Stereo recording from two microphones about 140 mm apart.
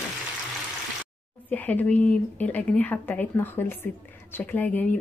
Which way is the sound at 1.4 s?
10° left (ahead or behind).